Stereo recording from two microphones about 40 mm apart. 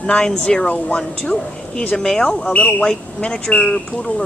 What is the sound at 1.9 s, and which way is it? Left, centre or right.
A woman's voice, centre.